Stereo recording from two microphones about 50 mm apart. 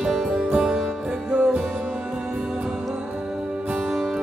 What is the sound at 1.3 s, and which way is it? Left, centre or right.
Music, right.